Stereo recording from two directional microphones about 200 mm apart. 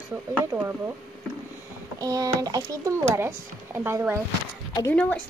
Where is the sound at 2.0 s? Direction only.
20° right (ahead or behind).